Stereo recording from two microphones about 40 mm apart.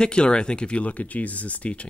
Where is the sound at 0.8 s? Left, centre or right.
Left.